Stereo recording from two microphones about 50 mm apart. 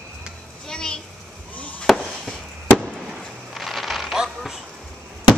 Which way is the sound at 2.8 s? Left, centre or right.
Centre.